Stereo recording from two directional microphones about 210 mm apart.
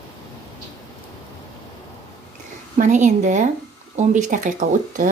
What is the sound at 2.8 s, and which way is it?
Speech, 35° right (ahead or behind).